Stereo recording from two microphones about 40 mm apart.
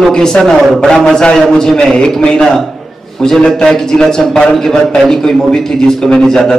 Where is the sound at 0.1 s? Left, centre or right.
Centre.